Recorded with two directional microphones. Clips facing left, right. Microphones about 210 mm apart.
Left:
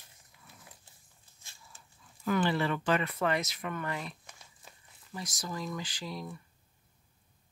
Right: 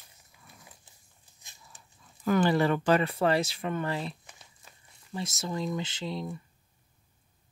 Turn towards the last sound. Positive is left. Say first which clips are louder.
# right 5 dB
turn(degrees=-25)  # may be behind; listen again after turning